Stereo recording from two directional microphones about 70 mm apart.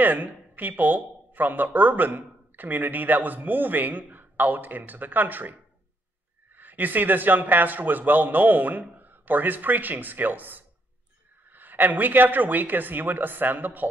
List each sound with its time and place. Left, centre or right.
0.0 s speech: right